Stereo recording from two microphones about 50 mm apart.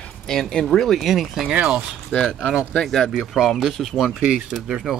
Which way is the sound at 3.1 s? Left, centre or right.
Centre.